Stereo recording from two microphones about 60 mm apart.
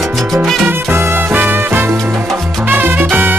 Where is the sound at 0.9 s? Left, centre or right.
Right.